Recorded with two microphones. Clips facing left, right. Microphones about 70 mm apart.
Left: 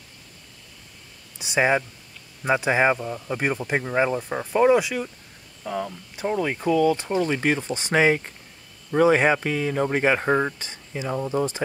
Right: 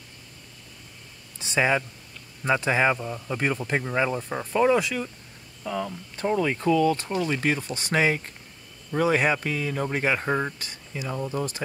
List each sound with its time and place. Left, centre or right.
1.4 s speech: centre
6.1 s speech: centre
6.8 s speech: left